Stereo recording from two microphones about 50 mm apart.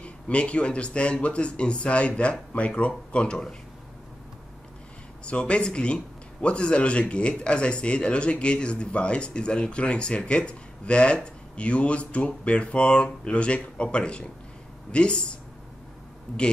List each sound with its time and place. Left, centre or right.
0.0 s speech: left
5.2 s speech: left
16.3 s speech: centre